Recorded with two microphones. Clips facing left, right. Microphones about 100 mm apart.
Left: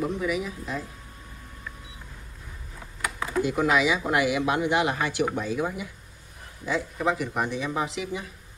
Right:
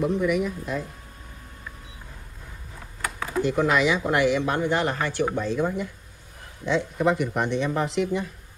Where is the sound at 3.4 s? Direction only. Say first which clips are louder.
Right 1 dB; 5° left (ahead or behind).